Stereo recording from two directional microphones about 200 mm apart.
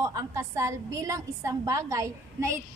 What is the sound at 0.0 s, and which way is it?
A woman's voice, 15° right (ahead or behind).